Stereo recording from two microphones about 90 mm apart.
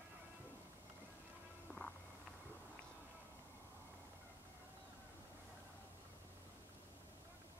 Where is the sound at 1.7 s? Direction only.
20° left (ahead or behind).